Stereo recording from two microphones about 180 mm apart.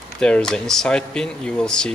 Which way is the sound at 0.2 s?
5° left (ahead or behind).